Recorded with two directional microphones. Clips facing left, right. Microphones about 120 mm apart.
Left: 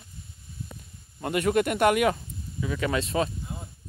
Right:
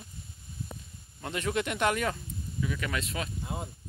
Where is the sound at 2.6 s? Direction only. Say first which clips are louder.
Left 6 dB; 30° left (ahead or behind).